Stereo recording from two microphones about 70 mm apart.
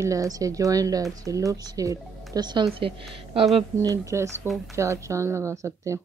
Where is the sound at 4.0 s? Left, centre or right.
Right.